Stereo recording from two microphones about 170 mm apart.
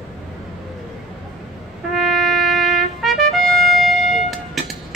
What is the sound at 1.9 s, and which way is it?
Trumpet, centre (ahead or behind).